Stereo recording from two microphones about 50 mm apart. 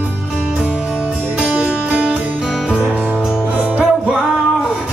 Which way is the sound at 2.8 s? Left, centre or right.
Right.